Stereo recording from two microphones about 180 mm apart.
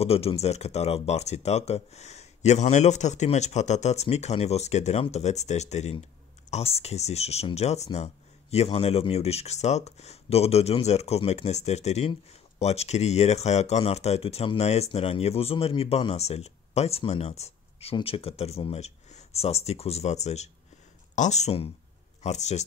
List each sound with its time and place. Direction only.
0.0 s speech: 35° left (ahead or behind)